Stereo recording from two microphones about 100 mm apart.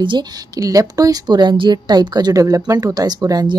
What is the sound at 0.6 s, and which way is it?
A woman's voice, 35° right (ahead or behind).